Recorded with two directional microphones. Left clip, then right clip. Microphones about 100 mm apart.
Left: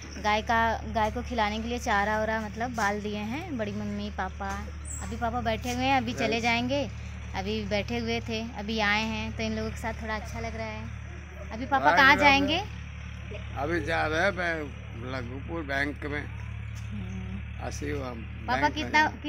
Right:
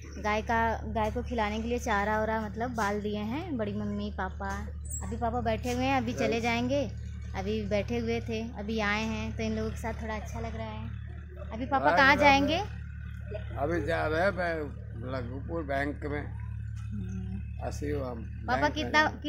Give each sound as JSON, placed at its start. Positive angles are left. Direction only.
{"t": 0.2, "sound": "a woman's voice", "side_deg": -10}
{"t": 4.4, "sound": "a woman's voice", "side_deg": -15}
{"t": 10.4, "sound": "a woman's voice", "side_deg": -5}
{"t": 17.6, "sound": "speech", "side_deg": -25}